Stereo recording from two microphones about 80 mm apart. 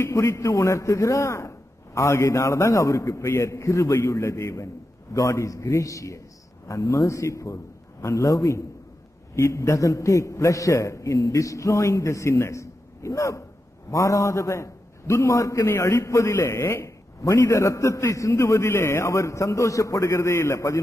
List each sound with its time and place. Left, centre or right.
0.0 s a man's voice: left